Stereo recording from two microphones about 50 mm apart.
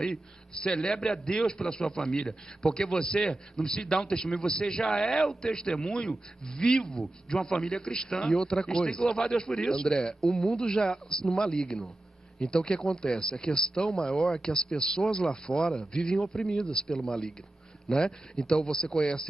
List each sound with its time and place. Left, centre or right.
0.6 s a man's voice: centre
12.8 s speech: centre
13.1 s a man's voice: centre